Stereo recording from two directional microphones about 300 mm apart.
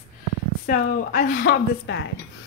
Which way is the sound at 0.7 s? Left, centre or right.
Left.